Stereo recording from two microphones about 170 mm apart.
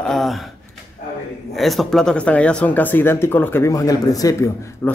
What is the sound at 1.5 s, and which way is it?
Speech, centre (ahead or behind).